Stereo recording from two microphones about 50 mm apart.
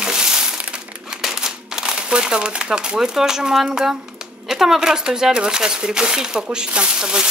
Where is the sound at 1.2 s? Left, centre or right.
Centre.